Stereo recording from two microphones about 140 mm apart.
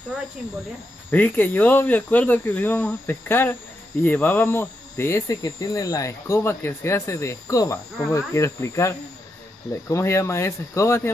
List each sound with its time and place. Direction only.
1.1 s speech: 10° left (ahead or behind)